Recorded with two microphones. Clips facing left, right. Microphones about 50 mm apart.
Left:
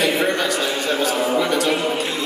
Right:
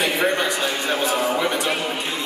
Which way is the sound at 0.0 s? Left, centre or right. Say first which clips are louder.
Left 1 dB; right.